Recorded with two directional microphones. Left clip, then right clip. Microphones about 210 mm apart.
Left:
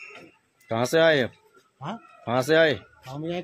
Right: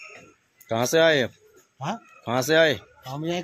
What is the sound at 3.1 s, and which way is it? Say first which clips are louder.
Speech: right 3 dB; 50° right (ahead or behind).